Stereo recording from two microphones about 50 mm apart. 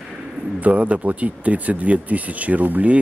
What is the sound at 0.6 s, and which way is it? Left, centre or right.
Speech, right.